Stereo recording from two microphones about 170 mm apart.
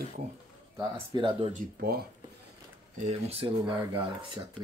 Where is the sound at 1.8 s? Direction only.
65° right (ahead or behind).